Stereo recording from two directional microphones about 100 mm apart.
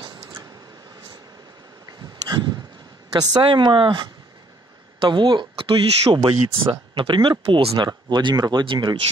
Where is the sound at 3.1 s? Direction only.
40° right (ahead or behind).